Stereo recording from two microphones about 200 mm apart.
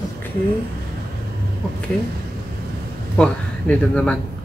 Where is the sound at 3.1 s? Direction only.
5° left (ahead or behind).